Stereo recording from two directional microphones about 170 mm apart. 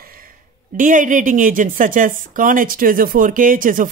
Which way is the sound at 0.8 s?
50° right (ahead or behind).